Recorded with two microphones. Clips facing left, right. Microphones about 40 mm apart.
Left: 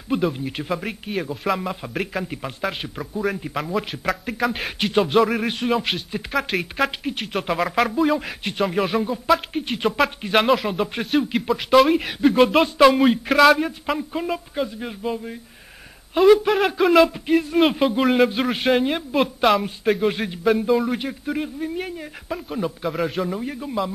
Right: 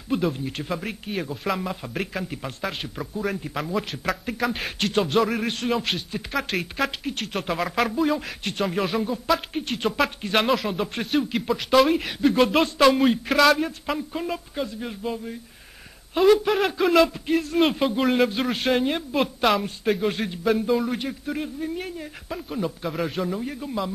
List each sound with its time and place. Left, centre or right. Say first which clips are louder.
0.1 s speech: left 2 dB; centre
16.2 s speech: left 3 dB; centre